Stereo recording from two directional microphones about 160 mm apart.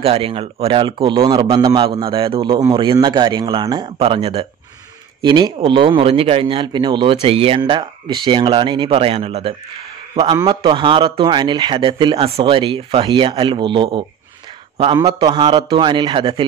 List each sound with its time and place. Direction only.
0.0 s a man's voice: 35° right (ahead or behind)